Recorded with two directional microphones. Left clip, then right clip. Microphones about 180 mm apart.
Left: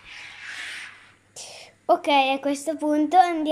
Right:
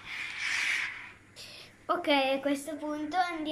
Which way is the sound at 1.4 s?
35° left (ahead or behind).